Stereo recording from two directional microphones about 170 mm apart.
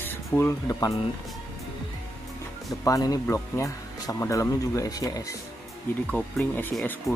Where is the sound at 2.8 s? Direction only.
20° left (ahead or behind).